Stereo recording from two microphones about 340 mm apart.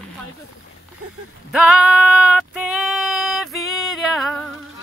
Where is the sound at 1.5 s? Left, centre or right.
Centre.